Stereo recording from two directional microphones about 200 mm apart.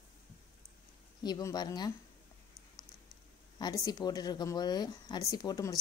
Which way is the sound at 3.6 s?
20° left (ahead or behind).